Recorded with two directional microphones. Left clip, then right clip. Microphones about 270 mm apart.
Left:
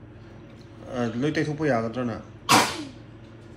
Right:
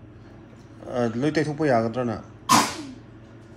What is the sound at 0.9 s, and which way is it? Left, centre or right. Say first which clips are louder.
Speech: right 3 dB; right.